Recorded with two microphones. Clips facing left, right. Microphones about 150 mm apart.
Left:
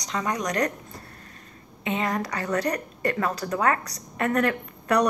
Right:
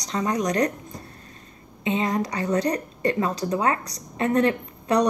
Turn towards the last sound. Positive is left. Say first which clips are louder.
# right 1 dB
turn(degrees=-25)  # may be behind; listen again after turning